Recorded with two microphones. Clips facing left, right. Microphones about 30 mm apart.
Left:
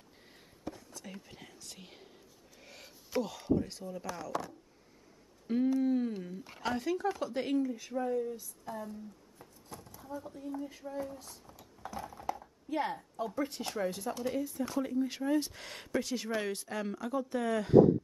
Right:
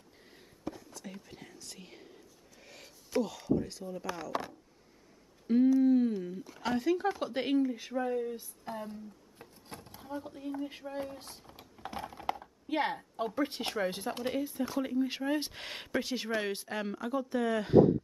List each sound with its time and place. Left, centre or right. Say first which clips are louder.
0.7 s whispering: right 2 dB; centre
3.5 s speech: even; centre
4.0 s speech: right 3 dB; right
5.8 s a sound: right 5 dB; centre
6.6 s speech: right 3 dB; centre
7.1 s speech: right 2 dB; right
9.4 s drawer open or close: right 2 dB; right
10.9 s speech: right 1 dB; right
14.4 s speech: right 1 dB; right